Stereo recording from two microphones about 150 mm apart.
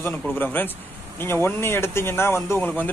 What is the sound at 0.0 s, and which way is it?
A man's voice, 15° left (ahead or behind).